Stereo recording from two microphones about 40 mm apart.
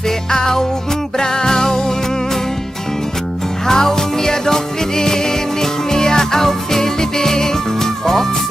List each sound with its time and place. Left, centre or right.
0.3 s music: centre
3.6 s music: centre